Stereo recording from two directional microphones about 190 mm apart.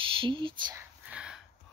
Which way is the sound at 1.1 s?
5° right (ahead or behind).